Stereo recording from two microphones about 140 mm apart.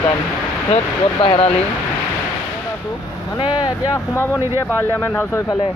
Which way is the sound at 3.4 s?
30° left (ahead or behind).